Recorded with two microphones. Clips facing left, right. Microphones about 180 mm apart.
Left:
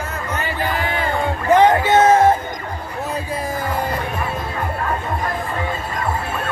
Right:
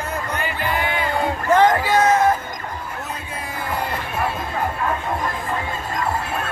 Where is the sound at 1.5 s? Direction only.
20° left (ahead or behind).